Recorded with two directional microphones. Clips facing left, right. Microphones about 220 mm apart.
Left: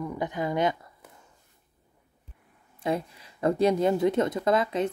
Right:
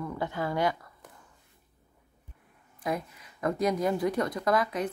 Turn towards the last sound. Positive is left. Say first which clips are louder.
# left 3 dB
turn(degrees=25)  # may be behind; listen again after turning